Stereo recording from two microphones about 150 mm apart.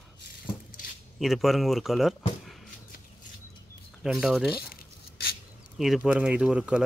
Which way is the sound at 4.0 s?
Centre (ahead or behind).